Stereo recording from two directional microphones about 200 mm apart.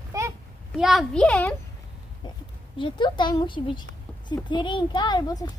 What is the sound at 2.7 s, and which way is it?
Speech, 25° left (ahead or behind).